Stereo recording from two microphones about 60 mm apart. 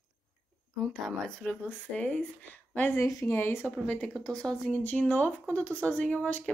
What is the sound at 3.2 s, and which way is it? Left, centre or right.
Speech, left.